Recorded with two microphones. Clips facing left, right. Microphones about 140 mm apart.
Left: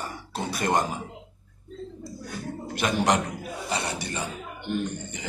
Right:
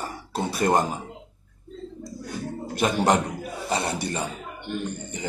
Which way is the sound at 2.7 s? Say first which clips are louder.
Right 3 dB; 35° right (ahead or behind).